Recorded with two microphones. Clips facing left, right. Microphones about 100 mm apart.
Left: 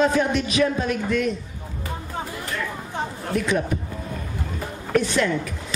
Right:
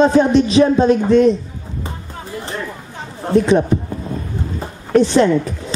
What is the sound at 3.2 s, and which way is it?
Speech, 30° right (ahead or behind).